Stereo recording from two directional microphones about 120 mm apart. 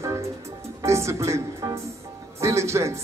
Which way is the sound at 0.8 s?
25° right (ahead or behind).